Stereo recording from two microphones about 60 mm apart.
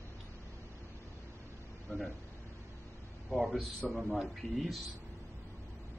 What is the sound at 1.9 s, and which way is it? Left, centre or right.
Speech, centre.